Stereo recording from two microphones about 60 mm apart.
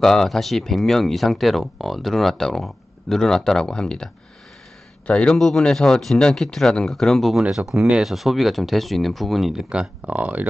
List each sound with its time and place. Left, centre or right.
0.0 s a man's voice: centre
7.5 s speech: centre
9.7 s speech: centre